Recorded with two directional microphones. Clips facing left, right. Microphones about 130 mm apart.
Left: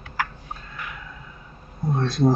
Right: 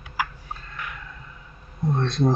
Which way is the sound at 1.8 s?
Centre (ahead or behind).